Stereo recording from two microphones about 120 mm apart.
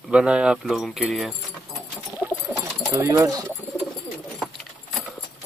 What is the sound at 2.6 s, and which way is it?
Pigeon, 25° right (ahead or behind).